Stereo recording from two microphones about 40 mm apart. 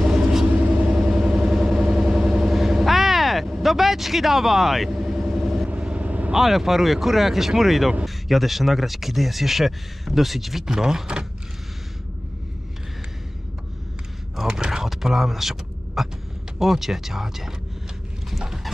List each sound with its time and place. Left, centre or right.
0.0 s vehicle: centre
0.8 s vehicle: right
1.2 s vehicle: centre
3.5 s speech: centre
5.0 s vehicle: centre
5.7 s vehicle: right
6.3 s speech: centre
14.5 s a sound: right
14.8 s a sound: centre
16.5 s speech: centre